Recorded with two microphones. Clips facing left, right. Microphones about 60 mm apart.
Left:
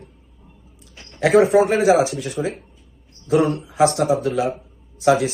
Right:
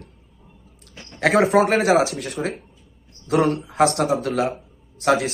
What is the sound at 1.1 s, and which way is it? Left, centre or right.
Speech, right.